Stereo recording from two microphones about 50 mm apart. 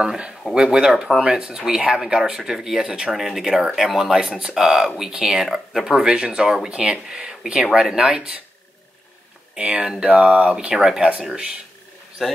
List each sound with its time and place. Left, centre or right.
0.0 s speech: centre
6.0 s speech: centre
9.6 s speech: right
12.2 s a man's voice: centre